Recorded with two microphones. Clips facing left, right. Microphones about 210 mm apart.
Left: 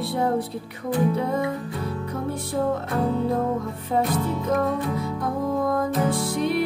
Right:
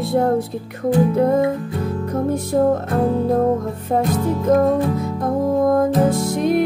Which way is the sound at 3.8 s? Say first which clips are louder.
Right 5 dB; 45° right (ahead or behind).